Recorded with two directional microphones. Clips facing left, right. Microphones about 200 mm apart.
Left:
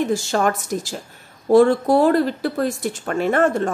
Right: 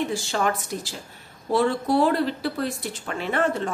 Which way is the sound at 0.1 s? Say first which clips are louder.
Left 5 dB; 45° left (ahead or behind).